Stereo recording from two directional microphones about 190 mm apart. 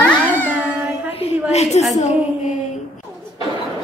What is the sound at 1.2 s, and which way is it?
Speech, 35° left (ahead or behind).